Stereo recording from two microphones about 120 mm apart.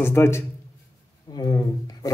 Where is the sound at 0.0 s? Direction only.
20° left (ahead or behind).